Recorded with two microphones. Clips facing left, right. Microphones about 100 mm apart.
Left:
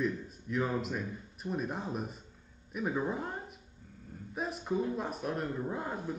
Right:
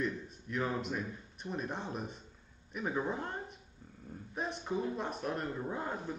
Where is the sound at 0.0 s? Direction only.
Centre (ahead or behind).